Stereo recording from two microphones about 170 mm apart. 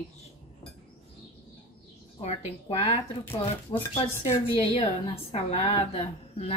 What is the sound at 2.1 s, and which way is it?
Speech, 35° left (ahead or behind).